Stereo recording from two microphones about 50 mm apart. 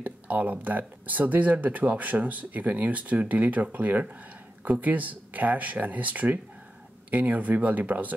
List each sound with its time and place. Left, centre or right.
0.0 s speech: right